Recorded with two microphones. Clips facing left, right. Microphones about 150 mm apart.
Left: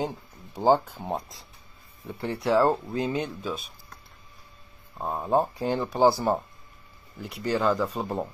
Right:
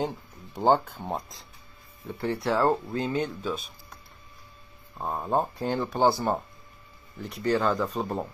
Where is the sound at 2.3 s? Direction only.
10° left (ahead or behind).